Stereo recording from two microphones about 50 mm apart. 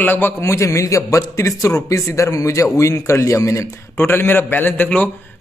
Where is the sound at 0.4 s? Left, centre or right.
Left.